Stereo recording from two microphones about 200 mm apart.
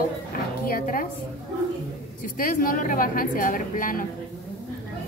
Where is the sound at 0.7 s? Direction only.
45° left (ahead or behind).